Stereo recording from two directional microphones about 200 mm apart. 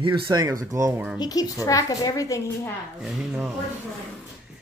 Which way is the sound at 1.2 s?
20° left (ahead or behind).